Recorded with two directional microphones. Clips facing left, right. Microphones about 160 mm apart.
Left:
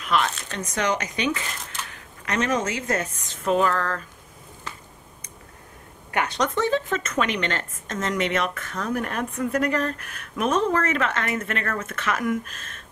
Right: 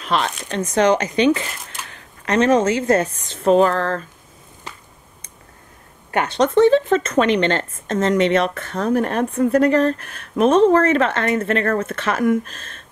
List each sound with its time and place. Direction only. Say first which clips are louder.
0.0 s a woman's voice: right 2 dB; 30° right (ahead or behind)
6.1 s a woman's voice: right 8 dB; 30° right (ahead or behind)